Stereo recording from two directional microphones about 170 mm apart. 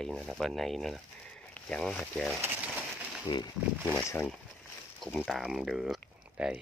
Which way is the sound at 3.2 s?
25° left (ahead or behind).